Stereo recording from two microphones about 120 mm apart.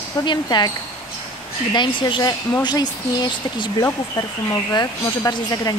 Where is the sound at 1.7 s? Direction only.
40° left (ahead or behind).